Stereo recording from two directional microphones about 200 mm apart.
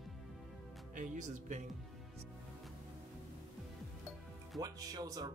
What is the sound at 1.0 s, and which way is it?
Speech, 40° right (ahead or behind).